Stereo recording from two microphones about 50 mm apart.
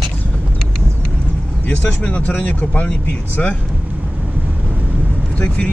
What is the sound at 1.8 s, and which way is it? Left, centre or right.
Speech, left.